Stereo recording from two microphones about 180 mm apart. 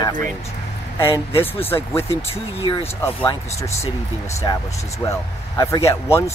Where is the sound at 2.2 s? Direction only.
30° left (ahead or behind).